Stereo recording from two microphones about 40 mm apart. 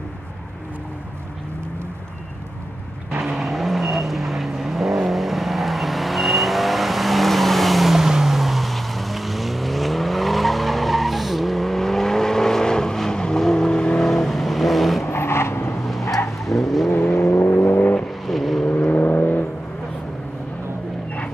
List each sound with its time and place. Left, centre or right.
3.2 s vehicle: centre; by 14.0 s left
14.0 s vehicle: centre
15.0 s vehicle: left
16.4 s vehicle: centre
17.2 s vehicle: left
18.2 s vehicle: centre
18.9 s vehicle: left